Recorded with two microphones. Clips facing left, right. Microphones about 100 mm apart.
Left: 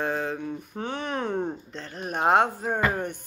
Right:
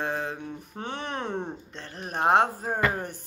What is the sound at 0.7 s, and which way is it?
Speech, 35° right (ahead or behind).